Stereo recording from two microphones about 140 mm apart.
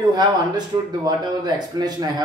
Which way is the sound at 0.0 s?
30° right (ahead or behind).